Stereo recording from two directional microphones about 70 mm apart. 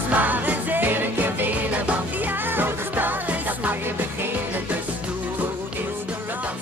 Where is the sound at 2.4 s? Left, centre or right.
Right.